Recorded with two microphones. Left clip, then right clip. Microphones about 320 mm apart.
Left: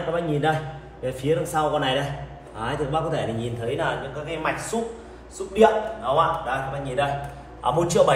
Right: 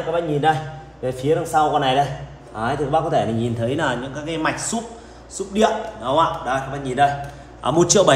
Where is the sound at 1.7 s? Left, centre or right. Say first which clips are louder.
Right 6 dB; centre.